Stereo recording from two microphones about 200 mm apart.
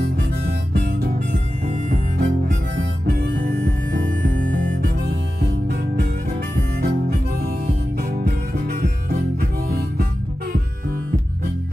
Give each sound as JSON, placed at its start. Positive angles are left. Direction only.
{"t": 0.0, "sound": "harmonica", "side_deg": -50}
{"t": 6.8, "sound": "harmonica", "side_deg": -50}